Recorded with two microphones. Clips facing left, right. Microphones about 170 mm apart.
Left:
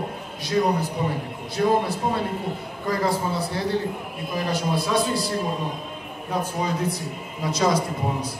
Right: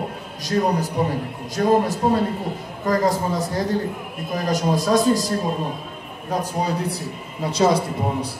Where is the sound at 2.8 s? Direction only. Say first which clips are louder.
Right 4 dB; 40° right (ahead or behind).